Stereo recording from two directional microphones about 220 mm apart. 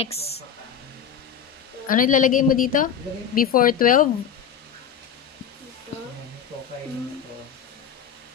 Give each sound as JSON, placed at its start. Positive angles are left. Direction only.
{"t": 0.0, "sound": "speech", "side_deg": 25}
{"t": 1.9, "sound": "a woman's voice", "side_deg": 35}
{"t": 5.9, "sound": "a sound", "side_deg": 30}